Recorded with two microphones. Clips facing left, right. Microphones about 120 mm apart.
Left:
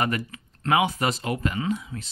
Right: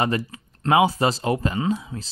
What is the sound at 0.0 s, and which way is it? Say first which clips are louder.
Speech: right 3 dB; 30° right (ahead or behind).